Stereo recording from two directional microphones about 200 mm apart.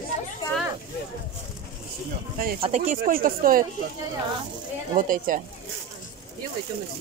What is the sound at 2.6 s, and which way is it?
Speech, 35° right (ahead or behind).